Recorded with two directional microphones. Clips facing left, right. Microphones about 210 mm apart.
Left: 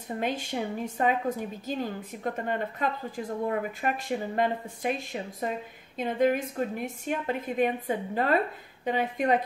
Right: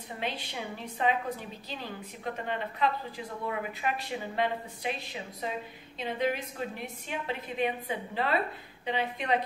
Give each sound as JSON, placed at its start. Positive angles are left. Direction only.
{"t": 0.2, "sound": "a woman's voice", "side_deg": 45}